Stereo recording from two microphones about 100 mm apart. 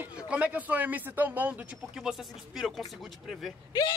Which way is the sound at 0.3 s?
15° right (ahead or behind).